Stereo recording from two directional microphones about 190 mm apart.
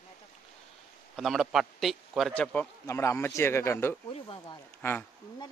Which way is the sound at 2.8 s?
15° left (ahead or behind).